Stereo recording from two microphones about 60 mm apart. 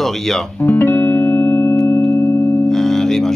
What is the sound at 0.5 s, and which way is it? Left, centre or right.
Music, left.